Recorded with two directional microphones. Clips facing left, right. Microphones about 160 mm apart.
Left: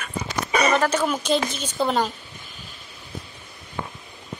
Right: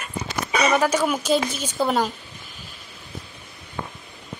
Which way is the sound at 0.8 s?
10° right (ahead or behind).